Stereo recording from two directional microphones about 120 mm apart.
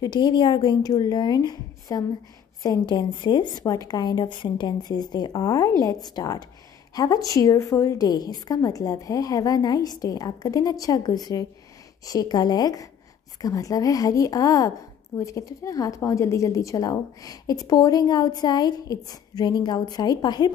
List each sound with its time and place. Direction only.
0.0 s a woman's voice: 40° left (ahead or behind)